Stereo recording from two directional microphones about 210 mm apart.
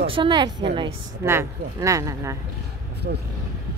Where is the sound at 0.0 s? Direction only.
25° right (ahead or behind).